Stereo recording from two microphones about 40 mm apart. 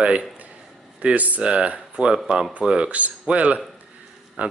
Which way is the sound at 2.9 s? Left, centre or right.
Right.